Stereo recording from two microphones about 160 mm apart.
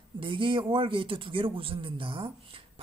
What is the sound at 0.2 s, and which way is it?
Speech, 30° right (ahead or behind).